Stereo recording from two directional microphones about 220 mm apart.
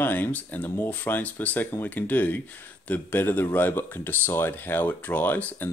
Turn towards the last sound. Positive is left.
turn(degrees=5)  # may be behind; listen again after turning